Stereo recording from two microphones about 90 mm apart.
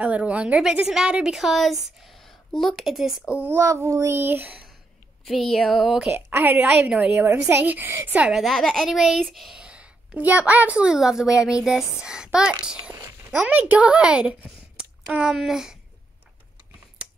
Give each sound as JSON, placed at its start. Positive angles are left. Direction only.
{"t": 0.0, "sound": "a woman's voice", "side_deg": -15}
{"t": 3.3, "sound": "a woman's voice", "side_deg": -20}
{"t": 3.5, "sound": "a woman's voice", "side_deg": -30}
{"t": 5.2, "sound": "a woman's voice", "side_deg": 0}
{"t": 6.1, "sound": "a woman's voice", "side_deg": -20}
{"t": 8.3, "sound": "a woman's voice", "side_deg": 0}